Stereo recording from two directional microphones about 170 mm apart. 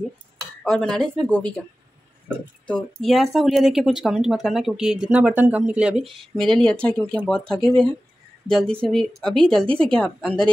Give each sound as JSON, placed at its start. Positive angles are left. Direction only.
{"t": 0.7, "sound": "speech", "side_deg": 5}
{"t": 2.6, "sound": "speech", "side_deg": 5}